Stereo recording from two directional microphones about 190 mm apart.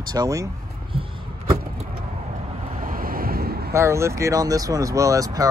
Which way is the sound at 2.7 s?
45° right (ahead or behind).